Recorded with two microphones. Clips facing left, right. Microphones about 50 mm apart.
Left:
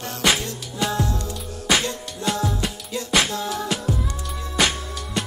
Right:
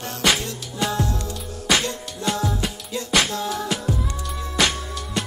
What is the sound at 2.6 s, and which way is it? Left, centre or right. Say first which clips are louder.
Music: even; centre.